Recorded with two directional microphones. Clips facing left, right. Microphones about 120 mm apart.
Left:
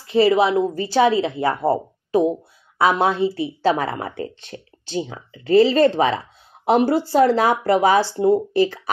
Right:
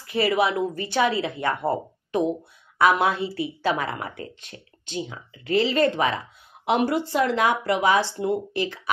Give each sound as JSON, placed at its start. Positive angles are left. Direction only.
{"t": 0.0, "sound": "a woman's voice", "side_deg": 25}